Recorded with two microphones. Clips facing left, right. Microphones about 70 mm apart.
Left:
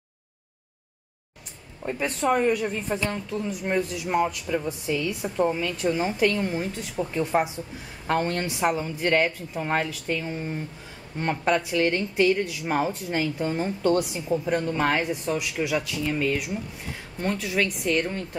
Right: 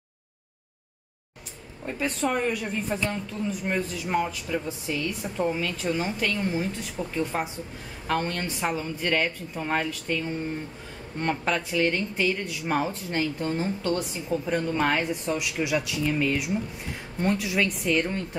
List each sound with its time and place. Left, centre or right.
1.9 s a woman's voice: centre
13.9 s speech: centre
14.5 s a woman's voice: centre